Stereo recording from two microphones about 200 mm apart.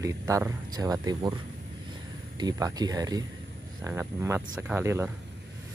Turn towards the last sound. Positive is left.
turn(degrees=-10)  # may be behind; listen again after turning